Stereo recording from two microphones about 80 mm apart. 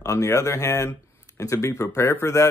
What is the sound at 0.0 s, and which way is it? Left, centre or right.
A man's voice, left.